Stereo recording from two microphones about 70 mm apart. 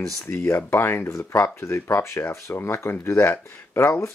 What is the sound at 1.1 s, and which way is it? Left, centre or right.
Speech, left.